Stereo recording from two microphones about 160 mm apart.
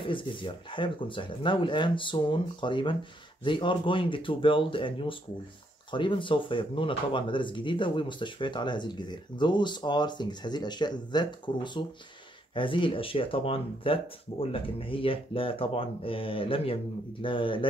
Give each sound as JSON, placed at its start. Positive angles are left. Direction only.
{"t": 0.0, "sound": "speech", "side_deg": 30}